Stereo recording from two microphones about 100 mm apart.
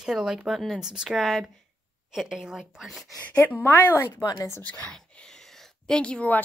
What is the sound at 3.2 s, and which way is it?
A woman's voice, 15° left (ahead or behind).